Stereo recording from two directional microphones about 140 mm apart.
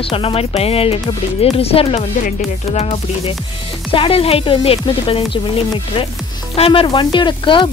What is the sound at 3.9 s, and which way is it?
Speech, 40° left (ahead or behind).